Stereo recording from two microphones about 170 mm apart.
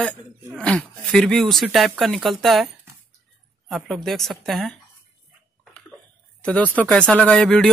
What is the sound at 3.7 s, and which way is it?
Speech, centre (ahead or behind).